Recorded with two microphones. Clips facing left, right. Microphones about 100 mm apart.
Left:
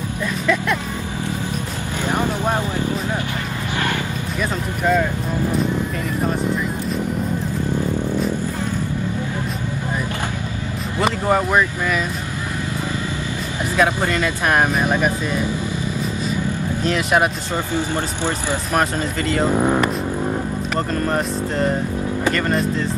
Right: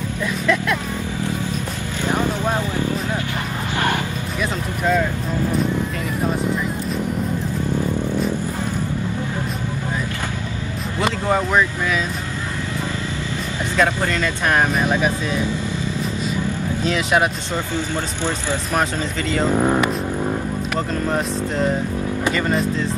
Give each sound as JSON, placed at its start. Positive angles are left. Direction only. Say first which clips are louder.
{"t": 2.0, "sound": "speech", "louder": "even", "side_deg": 15}
{"t": 6.2, "sound": "speech", "louder": "even", "side_deg": 0}
{"t": 11.0, "sound": "speech", "louder": "left 2 dB", "side_deg": 5}
{"t": 13.7, "sound": "speech", "louder": "left 1 dB", "side_deg": 10}
{"t": 16.8, "sound": "speech", "louder": "left 1 dB", "side_deg": 0}
{"t": 19.3, "sound": "speech", "louder": "even", "side_deg": 5}
{"t": 20.7, "sound": "speech", "louder": "left 1 dB", "side_deg": 0}